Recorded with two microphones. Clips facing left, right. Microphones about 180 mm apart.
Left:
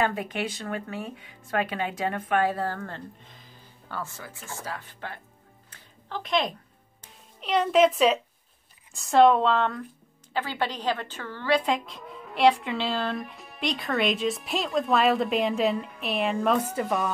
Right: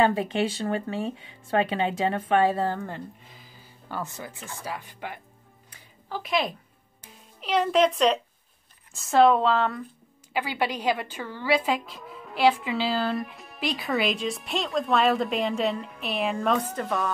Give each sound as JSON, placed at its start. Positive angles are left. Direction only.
{"t": 0.0, "sound": "speech", "side_deg": -25}
{"t": 2.8, "sound": "music", "side_deg": -10}
{"t": 4.0, "sound": "speech", "side_deg": -20}
{"t": 5.7, "sound": "a sound", "side_deg": -10}
{"t": 7.0, "sound": "music", "side_deg": 0}
{"t": 8.9, "sound": "speech", "side_deg": 0}